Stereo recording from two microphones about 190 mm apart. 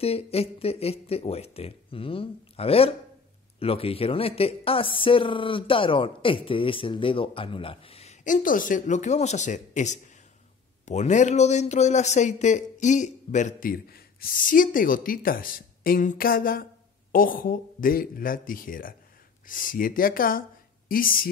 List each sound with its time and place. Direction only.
0.0 s a man's voice: 30° left (ahead or behind); by 21.3 s 50° left (ahead or behind)